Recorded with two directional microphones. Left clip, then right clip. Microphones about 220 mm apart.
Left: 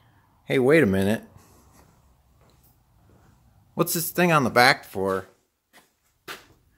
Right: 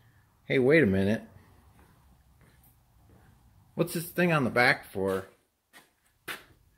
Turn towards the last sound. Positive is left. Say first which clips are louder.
# left 6 dB
turn(degrees=15)  # may be behind; listen again after turning